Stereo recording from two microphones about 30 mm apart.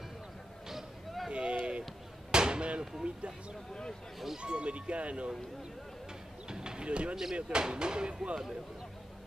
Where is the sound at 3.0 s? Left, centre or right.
Right.